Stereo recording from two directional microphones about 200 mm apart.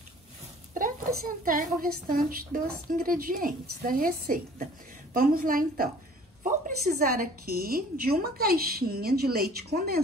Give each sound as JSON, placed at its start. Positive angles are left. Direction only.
{"t": 0.7, "sound": "a woman's voice", "side_deg": -45}